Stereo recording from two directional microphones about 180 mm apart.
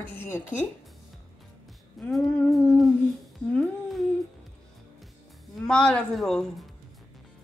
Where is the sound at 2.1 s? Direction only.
15° left (ahead or behind).